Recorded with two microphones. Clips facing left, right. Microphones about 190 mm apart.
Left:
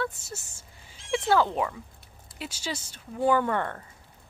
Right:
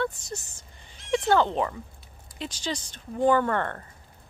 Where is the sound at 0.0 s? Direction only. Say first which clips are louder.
Right 3 dB; 5° left (ahead or behind).